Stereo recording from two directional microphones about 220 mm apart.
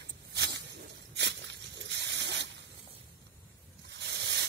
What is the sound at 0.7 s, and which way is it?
Dog, 50° right (ahead or behind).